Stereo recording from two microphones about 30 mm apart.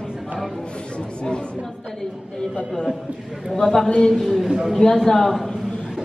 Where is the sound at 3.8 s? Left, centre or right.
Left.